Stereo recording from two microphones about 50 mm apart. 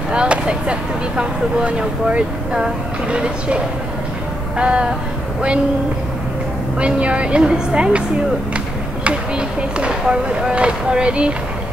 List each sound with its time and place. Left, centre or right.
0.1 s speech: centre
6.8 s speech: right
9.6 s speech: centre